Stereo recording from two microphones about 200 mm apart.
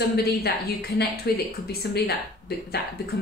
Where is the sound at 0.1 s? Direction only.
50° left (ahead or behind).